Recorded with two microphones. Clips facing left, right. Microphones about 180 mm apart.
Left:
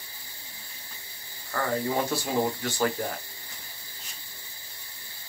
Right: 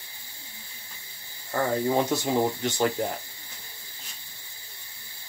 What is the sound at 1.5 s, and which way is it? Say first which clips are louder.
Speech: right 3 dB; 25° right (ahead or behind).